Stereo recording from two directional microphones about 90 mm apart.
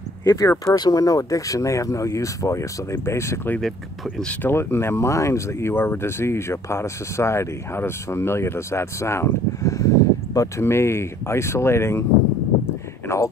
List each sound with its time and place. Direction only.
0.2 s speech: 35° left (ahead or behind)
0.7 s speech: 45° left (ahead or behind); by 3.5 s 30° left (ahead or behind)
3.6 s speech: 5° left (ahead or behind)
4.3 s speech: 25° left (ahead or behind)
13.1 s speech: 30° left (ahead or behind)